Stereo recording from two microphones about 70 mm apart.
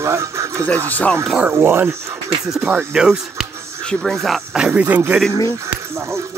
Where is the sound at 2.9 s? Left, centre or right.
Centre.